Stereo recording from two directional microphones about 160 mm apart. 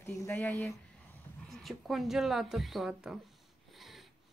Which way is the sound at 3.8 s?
Centre (ahead or behind).